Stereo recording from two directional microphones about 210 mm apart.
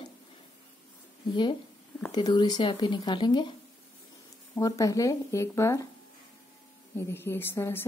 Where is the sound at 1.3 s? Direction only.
20° left (ahead or behind).